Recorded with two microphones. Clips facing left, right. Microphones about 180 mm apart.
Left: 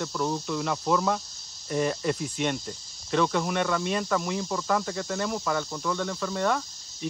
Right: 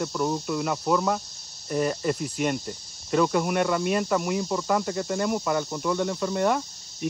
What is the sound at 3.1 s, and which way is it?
Speech, 5° right (ahead or behind).